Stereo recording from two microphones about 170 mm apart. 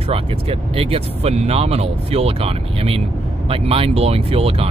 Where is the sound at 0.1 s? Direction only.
35° right (ahead or behind).